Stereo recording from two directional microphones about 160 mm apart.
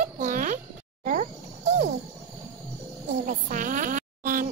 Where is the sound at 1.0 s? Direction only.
50° right (ahead or behind).